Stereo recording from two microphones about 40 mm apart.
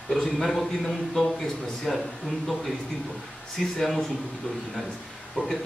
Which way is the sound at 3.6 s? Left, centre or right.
Centre.